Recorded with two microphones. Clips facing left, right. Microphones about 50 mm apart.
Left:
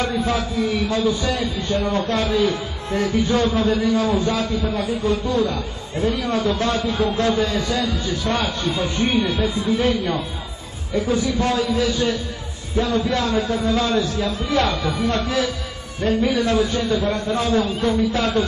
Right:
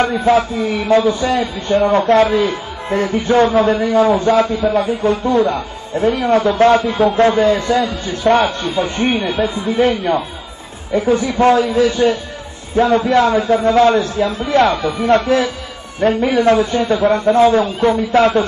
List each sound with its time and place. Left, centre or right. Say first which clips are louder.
0.2 s a man's voice: right 8 dB; right